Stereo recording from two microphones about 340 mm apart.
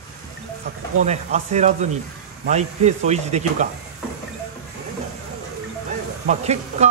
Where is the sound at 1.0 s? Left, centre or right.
Centre.